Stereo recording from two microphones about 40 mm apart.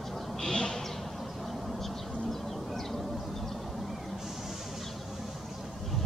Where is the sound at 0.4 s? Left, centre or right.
Centre.